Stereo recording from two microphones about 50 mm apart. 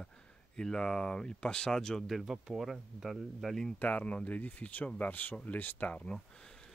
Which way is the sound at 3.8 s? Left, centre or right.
Left.